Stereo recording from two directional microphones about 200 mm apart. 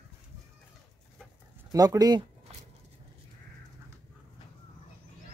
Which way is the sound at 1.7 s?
15° right (ahead or behind).